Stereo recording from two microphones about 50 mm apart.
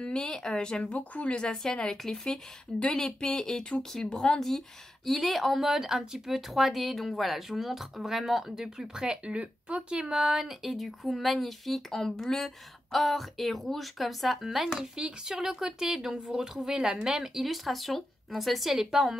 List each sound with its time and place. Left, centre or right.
0.0 s a woman's voice: centre